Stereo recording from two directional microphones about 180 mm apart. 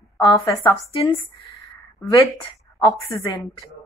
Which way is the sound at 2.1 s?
20° left (ahead or behind).